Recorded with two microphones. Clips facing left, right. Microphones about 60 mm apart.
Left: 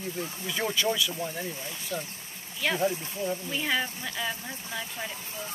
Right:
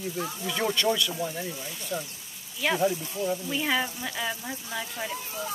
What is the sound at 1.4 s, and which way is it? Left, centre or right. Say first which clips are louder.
Speech: even; centre.